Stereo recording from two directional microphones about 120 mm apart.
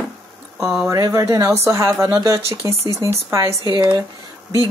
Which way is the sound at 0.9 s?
25° right (ahead or behind).